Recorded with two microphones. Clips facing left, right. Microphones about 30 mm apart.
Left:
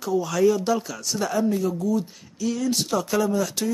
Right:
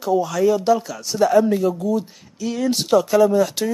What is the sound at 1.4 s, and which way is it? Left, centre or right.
Speech, right.